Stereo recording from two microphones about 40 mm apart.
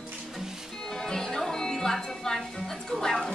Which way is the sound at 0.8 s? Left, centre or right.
Centre.